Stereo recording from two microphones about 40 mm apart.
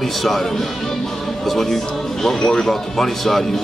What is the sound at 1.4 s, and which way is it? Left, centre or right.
Speech, centre.